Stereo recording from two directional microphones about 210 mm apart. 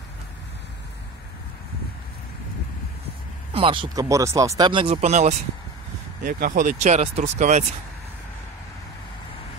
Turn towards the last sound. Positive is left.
turn(degrees=-35)  # may be behind; listen again after turning